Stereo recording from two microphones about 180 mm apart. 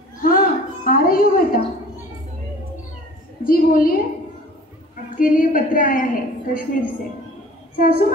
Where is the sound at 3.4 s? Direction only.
50° left (ahead or behind).